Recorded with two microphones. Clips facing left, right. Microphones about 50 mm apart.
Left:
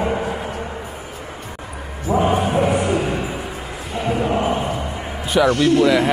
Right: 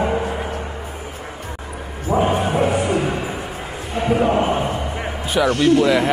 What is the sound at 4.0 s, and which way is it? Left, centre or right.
Music, right.